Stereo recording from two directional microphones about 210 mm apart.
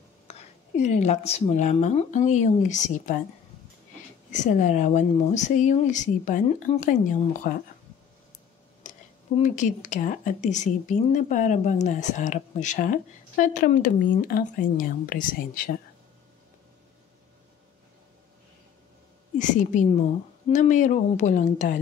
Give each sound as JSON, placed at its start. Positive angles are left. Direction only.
{"t": 0.3, "sound": "a woman's voice", "side_deg": 35}
{"t": 4.3, "sound": "a woman's voice", "side_deg": 35}
{"t": 8.8, "sound": "a sound", "side_deg": 35}
{"t": 9.4, "sound": "a woman's voice", "side_deg": 35}
{"t": 19.3, "sound": "a woman's voice", "side_deg": 35}